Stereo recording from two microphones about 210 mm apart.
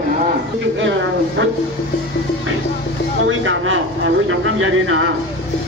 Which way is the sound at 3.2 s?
70° right (ahead or behind).